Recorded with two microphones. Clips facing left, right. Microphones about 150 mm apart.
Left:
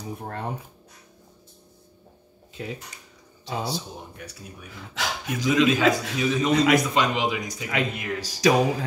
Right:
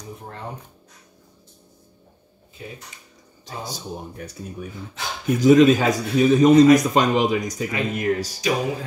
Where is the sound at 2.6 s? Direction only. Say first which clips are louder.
Left 4 dB; 90° left.